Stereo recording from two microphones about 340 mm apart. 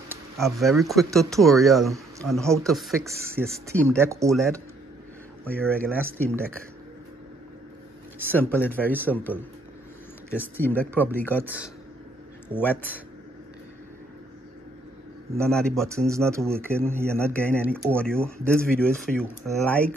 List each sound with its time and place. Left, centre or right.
0.4 s speech: centre
3.4 s speech: centre
3.7 s speech: centre
4.0 s speech: centre
5.4 s speech: centre
8.3 s speech: centre
10.3 s speech: centre
15.4 s speech: centre
17.1 s speech: centre